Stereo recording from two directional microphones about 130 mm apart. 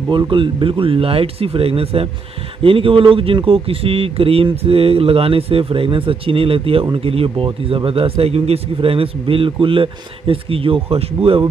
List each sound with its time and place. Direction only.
0.1 s speech: 40° right (ahead or behind)